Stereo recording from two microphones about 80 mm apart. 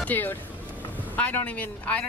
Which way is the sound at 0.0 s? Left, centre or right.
Left.